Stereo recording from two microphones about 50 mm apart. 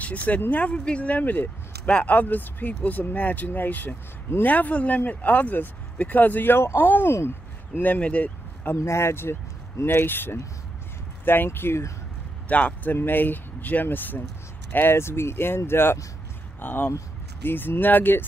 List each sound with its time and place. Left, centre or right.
0.0 s speech: left
1.9 s speech: left
2.1 s speech: left
7.8 s speech: left
8.7 s speech: left
12.4 s speech: left
12.9 s speech: left